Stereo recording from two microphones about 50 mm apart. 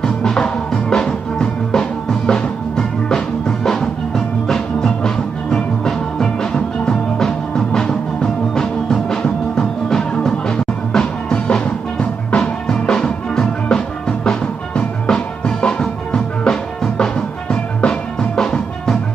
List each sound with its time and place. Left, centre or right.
0.0 s music: centre
11.3 s music: left
12.4 s music: centre